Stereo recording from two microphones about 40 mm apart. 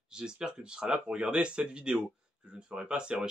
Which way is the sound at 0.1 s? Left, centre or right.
Centre.